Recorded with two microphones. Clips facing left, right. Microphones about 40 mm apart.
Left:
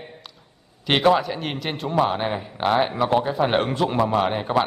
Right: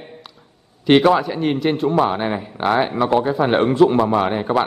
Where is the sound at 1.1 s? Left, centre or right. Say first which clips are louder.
Right 3 dB; centre.